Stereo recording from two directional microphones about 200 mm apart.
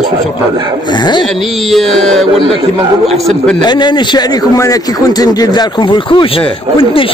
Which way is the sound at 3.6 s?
20° left (ahead or behind).